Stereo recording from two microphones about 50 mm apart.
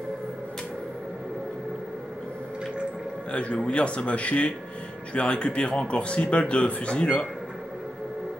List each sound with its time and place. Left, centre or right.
3.3 s speech: left